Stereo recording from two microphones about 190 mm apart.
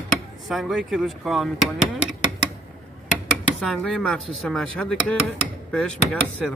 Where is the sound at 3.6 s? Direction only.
Centre (ahead or behind).